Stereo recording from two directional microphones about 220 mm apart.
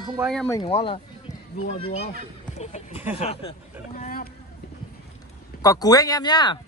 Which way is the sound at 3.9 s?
40° left (ahead or behind).